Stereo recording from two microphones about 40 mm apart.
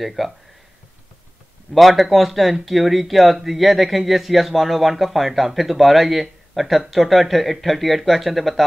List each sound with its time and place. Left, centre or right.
0.0 s speech: centre
1.7 s speech: centre